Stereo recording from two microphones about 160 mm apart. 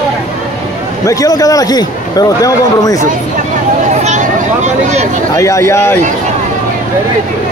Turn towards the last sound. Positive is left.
turn(degrees=15)  # may be behind; listen again after turning